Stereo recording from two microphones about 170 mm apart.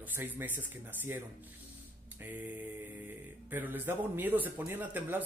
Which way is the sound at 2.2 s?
10° right (ahead or behind).